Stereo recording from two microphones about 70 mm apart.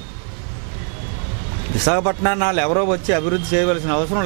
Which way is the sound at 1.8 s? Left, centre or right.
Centre.